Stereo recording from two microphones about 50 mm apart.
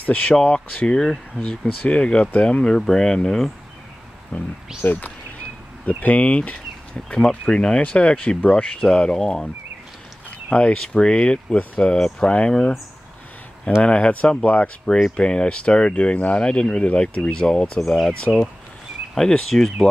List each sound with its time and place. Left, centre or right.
0.0 s speech: left
0.9 s speech: centre
1.8 s speech: left
2.6 s speech: centre
4.3 s speech: left
4.8 s speech: left
5.9 s speech: left
7.2 s speech: centre
8.4 s speech: left
8.7 s speech: centre
10.5 s speech: left
13.8 s speech: left
19.1 s speech: centre